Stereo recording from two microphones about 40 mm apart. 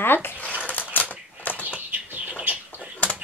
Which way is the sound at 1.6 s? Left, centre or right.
Right.